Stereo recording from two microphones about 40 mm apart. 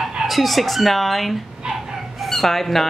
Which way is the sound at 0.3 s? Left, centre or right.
Centre.